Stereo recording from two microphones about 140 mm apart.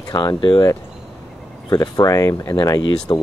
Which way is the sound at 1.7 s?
25° left (ahead or behind).